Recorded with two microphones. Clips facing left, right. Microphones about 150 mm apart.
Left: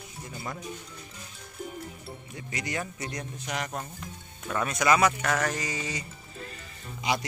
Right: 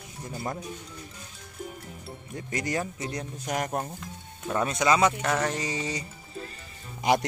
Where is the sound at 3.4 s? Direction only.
45° right (ahead or behind).